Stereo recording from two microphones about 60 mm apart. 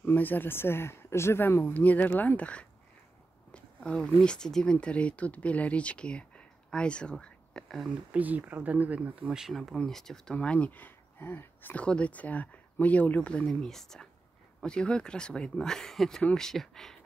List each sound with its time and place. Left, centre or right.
0.0 s speech: left
1.6 s speech: left; by 7.9 s centre
8.1 s speech: right
9.5 s speech: centre
10.3 s speech: left
11.7 s speech: left
13.5 s speech: centre